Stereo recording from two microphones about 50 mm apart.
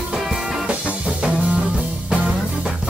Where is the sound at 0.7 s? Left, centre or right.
Right.